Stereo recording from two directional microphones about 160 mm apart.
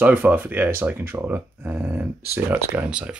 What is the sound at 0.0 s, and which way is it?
Speech, 10° right (ahead or behind).